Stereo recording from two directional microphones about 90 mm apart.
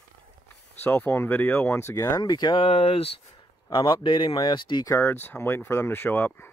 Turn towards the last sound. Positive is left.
turn(degrees=25)  # may be behind; listen again after turning